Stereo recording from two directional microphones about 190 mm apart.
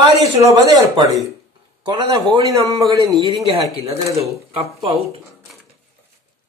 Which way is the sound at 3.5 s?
30° right (ahead or behind).